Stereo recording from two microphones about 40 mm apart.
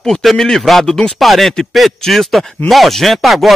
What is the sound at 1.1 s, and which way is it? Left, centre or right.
Speech, centre.